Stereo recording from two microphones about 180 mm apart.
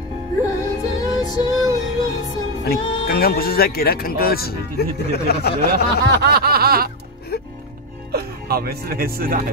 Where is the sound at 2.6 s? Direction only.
60° left (ahead or behind).